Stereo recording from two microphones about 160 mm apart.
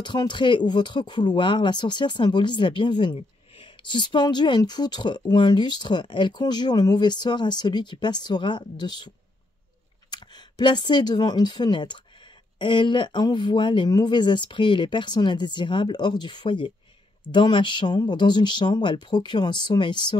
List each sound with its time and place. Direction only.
0.0 s speech: 30° left (ahead or behind)
10.1 s speech: 30° left (ahead or behind)